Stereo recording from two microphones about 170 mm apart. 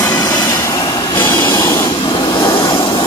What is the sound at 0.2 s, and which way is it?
Vehicle, 20° left (ahead or behind).